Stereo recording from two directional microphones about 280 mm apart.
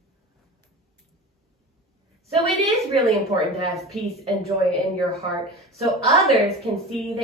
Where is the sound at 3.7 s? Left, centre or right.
Centre.